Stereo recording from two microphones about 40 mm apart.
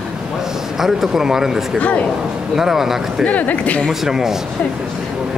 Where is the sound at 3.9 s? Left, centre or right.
Centre.